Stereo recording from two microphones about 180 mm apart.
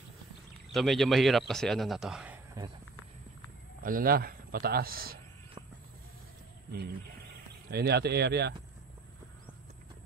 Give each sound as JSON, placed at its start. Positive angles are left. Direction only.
{"t": 0.7, "sound": "a man's voice", "side_deg": 0}
{"t": 3.8, "sound": "speech", "side_deg": -55}
{"t": 7.7, "sound": "speech", "side_deg": -65}